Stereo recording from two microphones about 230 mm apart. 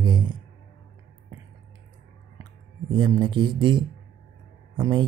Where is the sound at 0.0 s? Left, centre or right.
Centre.